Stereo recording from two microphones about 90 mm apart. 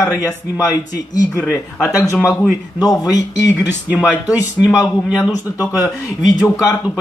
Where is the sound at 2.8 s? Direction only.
45° left (ahead or behind).